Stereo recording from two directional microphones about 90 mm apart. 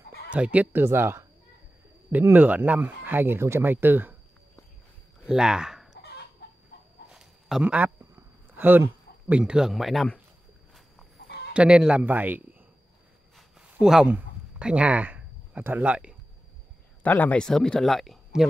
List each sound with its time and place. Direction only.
0.3 s speech: 15° right (ahead or behind)
0.8 s speech: 30° right (ahead or behind)
5.2 s speech: 5° right (ahead or behind)
7.1 s a sound: 5° right (ahead or behind)
7.6 s speech: 15° right (ahead or behind)
8.0 s a sound: 25° right (ahead or behind)
9.3 s speech: 10° right (ahead or behind)
11.5 s speech: 10° right (ahead or behind)
13.6 s a sound: 5° right (ahead or behind)
17.0 s speech: 15° left (ahead or behind); by 18.5 s centre (ahead or behind)